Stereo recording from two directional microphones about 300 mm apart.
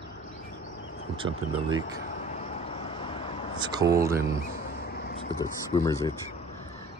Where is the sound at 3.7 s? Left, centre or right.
Centre.